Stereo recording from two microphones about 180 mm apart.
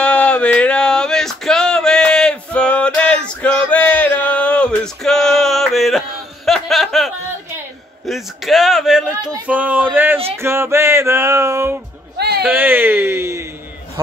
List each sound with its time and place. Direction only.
0.0 s male singing: 5° left (ahead or behind)
8.1 s speech: centre (ahead or behind)
12.2 s a sound: 65° right (ahead or behind)
12.4 s speech: 10° right (ahead or behind)